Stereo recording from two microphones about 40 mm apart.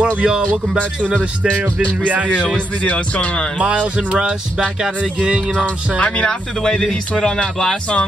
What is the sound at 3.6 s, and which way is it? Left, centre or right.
Speech, right.